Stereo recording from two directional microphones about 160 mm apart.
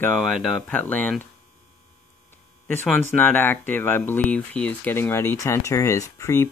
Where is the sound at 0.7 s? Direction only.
10° left (ahead or behind).